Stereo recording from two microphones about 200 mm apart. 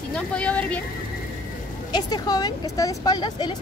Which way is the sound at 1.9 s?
20° left (ahead or behind).